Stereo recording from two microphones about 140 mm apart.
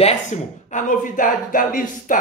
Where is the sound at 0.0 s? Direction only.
50° left (ahead or behind).